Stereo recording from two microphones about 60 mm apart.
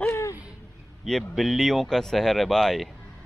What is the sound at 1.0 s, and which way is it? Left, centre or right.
Speech, centre.